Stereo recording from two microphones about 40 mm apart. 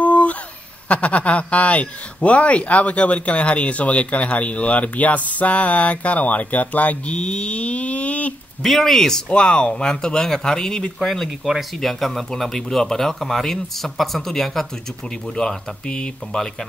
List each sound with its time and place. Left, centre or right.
0.0 s a sound: left
0.8 s speech: left
7.1 s a sound: left
8.6 s speech: centre
9.3 s speech: left
11.0 s speech: centre
11.8 s speech: centre
15.3 s speech: left